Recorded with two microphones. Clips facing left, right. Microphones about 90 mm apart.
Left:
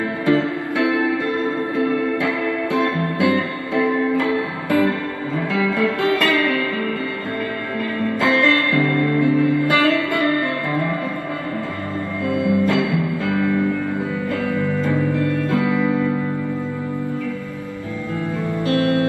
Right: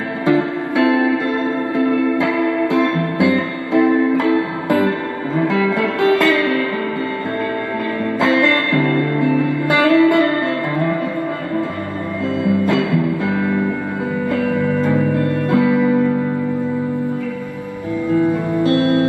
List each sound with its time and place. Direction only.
0.2 s music: 20° right (ahead or behind)
8.2 s music: 20° right (ahead or behind)
12.4 s music: 20° right (ahead or behind)
18.1 s music: 20° right (ahead or behind)